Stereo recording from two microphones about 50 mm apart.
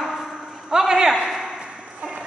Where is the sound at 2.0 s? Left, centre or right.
Right.